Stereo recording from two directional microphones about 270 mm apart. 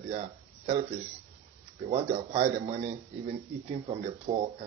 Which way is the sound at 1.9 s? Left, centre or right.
Right.